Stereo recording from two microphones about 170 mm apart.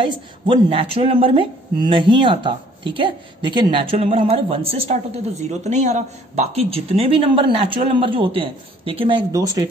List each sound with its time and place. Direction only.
0.0 s speech: 30° right (ahead or behind)
9.3 s speech: 20° right (ahead or behind)